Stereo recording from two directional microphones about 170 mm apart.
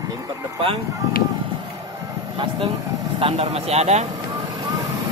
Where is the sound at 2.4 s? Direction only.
25° right (ahead or behind).